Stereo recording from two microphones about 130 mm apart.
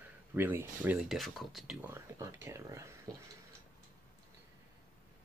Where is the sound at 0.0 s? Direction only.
15° right (ahead or behind).